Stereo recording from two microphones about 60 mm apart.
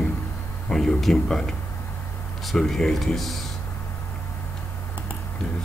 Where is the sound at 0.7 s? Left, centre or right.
Centre.